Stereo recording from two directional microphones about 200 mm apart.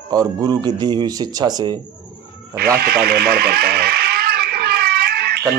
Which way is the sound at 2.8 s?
50° right (ahead or behind).